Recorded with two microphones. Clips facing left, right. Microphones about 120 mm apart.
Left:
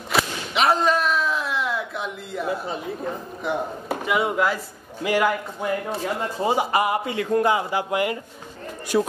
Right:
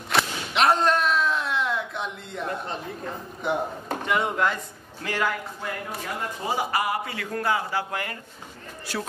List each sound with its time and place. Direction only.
0.1 s whip: centre (ahead or behind)
3.4 s a man's voice: 5° left (ahead or behind)
5.9 s a man's voice: 25° left (ahead or behind)